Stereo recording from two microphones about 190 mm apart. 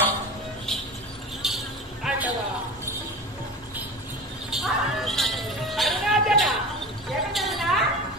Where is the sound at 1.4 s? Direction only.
Centre (ahead or behind).